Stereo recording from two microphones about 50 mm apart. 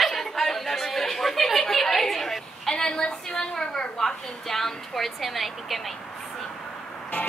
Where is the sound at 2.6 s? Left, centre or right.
Centre.